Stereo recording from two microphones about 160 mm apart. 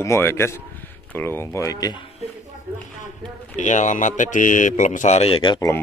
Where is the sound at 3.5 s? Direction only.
50° left (ahead or behind); by 5.8 s 25° left (ahead or behind).